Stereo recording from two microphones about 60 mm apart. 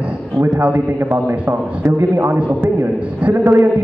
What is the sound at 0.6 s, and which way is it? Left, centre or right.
Speech, right.